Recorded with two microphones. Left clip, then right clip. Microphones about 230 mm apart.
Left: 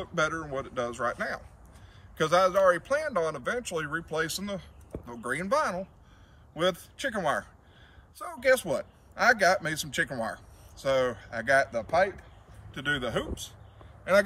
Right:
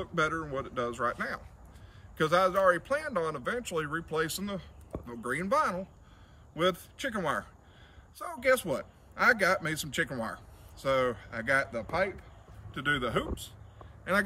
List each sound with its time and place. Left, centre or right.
0.0 s a man's voice: centre